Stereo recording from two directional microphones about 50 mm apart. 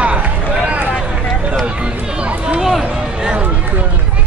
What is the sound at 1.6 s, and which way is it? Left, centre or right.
Speech, right.